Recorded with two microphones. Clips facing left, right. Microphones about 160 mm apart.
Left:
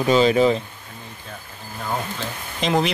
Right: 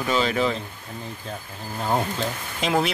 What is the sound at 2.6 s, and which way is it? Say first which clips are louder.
Speech: left 2 dB; 5° right (ahead or behind).